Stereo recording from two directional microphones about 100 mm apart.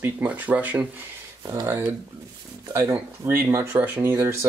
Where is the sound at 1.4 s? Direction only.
35° right (ahead or behind).